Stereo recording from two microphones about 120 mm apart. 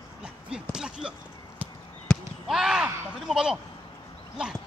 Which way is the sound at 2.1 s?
5° left (ahead or behind).